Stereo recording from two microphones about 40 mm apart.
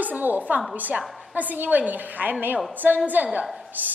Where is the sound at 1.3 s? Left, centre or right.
Right.